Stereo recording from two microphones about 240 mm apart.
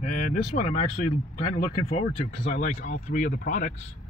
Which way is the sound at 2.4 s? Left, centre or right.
Left.